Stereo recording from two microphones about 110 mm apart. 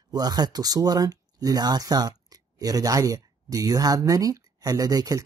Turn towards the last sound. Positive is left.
turn(degrees=-35)  # may be behind; listen again after turning